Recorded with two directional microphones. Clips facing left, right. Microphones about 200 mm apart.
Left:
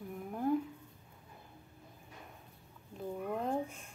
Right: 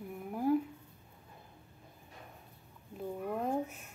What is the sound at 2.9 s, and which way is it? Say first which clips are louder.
Speech: right 1 dB; 5° right (ahead or behind).